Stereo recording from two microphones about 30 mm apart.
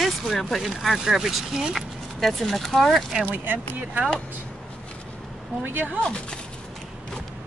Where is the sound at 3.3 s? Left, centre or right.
Right.